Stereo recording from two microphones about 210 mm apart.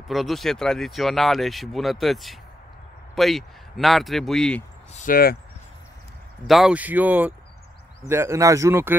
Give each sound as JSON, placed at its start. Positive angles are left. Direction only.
{"t": 0.1, "sound": "speech", "side_deg": 0}
{"t": 4.9, "sound": "speech", "side_deg": 40}
{"t": 6.4, "sound": "speech", "side_deg": 0}